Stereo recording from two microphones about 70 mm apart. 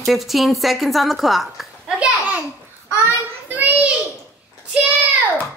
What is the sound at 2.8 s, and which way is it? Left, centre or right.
Child singing, right.